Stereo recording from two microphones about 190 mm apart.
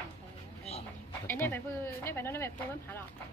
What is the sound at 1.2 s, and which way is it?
Speech, 10° left (ahead or behind).